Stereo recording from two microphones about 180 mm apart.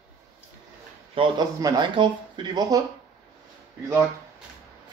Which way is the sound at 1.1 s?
25° right (ahead or behind).